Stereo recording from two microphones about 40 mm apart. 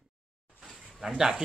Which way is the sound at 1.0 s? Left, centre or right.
Centre.